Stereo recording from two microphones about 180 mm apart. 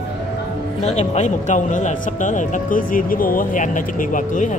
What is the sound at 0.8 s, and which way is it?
Speech, 40° left (ahead or behind).